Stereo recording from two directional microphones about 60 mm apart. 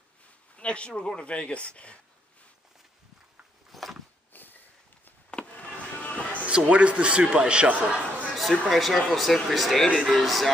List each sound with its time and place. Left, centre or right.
0.6 s speech: centre
3.7 s a sound: centre
4.3 s sniff: left
5.5 s music: left
6.7 s a man's voice: right
8.4 s speech: centre